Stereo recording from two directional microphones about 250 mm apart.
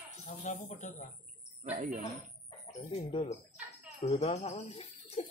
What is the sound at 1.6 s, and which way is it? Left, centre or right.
Speech, right.